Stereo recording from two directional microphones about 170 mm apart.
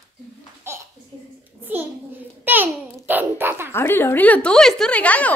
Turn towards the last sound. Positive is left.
turn(degrees=10)  # may be behind; listen again after turning